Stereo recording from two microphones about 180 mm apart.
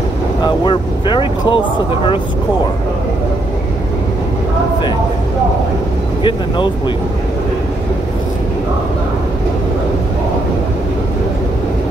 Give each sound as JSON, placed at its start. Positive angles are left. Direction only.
{"t": 0.4, "sound": "speech", "side_deg": 25}